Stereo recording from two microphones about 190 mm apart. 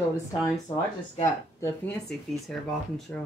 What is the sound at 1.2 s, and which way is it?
Speech, 15° left (ahead or behind).